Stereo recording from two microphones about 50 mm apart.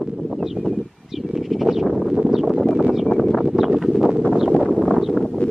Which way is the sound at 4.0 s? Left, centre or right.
Centre.